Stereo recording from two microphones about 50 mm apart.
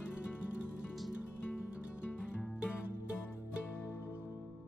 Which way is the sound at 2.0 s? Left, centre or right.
Left.